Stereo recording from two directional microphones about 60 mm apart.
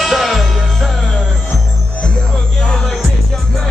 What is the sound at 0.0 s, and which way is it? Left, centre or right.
Music, centre.